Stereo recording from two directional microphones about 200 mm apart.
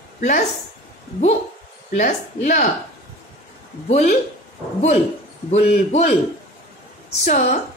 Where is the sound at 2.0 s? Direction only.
40° left (ahead or behind).